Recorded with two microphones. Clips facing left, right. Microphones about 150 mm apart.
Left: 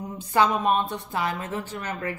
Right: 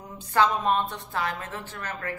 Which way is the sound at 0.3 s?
15° left (ahead or behind).